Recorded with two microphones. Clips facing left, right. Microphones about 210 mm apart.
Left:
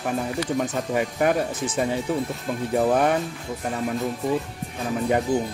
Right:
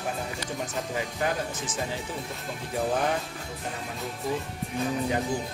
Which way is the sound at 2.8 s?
60° left (ahead or behind).